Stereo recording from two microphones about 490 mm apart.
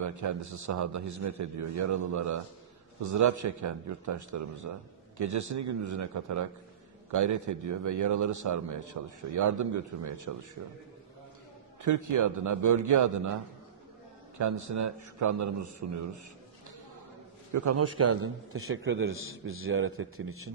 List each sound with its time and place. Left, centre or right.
0.0 s a man's voice: right
11.8 s a man's voice: right
14.4 s a man's voice: right
17.5 s a man's voice: right